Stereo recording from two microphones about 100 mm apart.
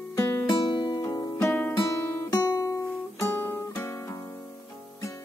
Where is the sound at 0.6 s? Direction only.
50° left (ahead or behind).